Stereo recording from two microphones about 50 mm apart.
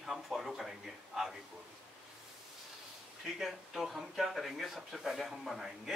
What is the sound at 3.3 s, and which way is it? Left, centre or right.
Speech, centre.